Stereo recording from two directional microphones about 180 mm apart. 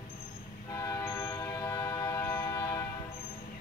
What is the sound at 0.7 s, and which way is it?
Train, 20° left (ahead or behind).